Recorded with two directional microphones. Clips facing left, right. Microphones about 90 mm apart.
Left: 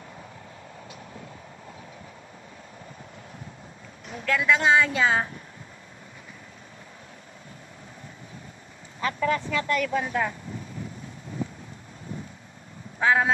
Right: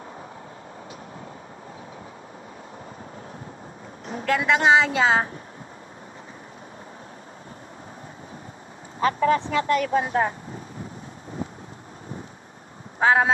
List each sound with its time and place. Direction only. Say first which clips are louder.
4.0 s a sound: right 6 dB; 35° right (ahead or behind)
4.5 s a woman's voice: right 2 dB; 65° right (ahead or behind)
9.0 s speech: right 5 dB; 35° right (ahead or behind)
13.0 s speech: right 3 dB; 45° right (ahead or behind)